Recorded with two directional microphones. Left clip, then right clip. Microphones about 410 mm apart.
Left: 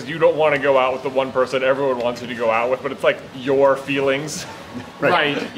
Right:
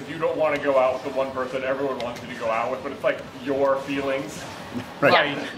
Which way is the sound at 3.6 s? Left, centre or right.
Left.